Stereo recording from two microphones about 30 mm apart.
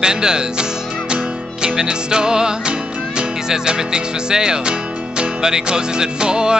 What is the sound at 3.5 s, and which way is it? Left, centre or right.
Speech, right.